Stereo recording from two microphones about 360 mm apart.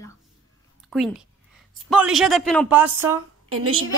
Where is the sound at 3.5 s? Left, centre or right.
Right.